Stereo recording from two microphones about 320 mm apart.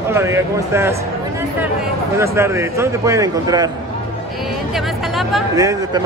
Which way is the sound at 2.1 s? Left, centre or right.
Centre.